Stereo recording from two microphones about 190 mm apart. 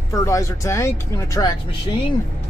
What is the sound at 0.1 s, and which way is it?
Speech, 15° left (ahead or behind).